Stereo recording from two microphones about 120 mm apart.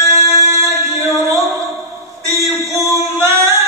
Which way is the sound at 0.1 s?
25° right (ahead or behind).